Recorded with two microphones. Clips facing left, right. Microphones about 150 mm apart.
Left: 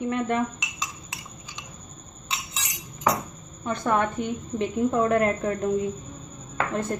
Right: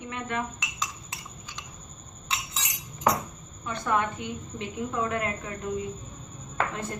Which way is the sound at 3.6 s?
40° left (ahead or behind).